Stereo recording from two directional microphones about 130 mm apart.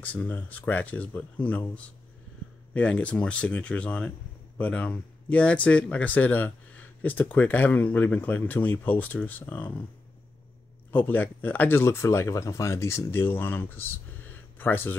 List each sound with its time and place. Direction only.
0.0 s speech: 10° left (ahead or behind)
2.7 s speech: 10° left (ahead or behind)
10.9 s speech: 15° left (ahead or behind)